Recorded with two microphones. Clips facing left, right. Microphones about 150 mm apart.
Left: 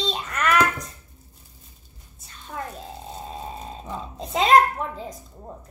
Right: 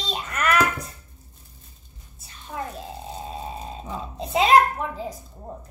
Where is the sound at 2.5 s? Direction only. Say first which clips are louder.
Right 1 dB; 10° right (ahead or behind).